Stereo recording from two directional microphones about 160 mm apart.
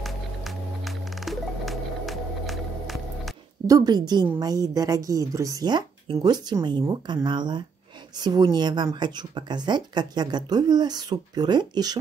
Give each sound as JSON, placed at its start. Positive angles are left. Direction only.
{"t": 0.0, "sound": "music", "side_deg": 0}
{"t": 3.6, "sound": "speech", "side_deg": -25}